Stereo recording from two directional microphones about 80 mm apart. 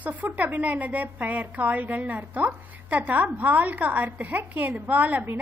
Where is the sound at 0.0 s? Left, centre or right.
Centre.